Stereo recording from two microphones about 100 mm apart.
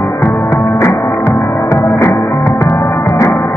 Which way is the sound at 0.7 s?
30° left (ahead or behind).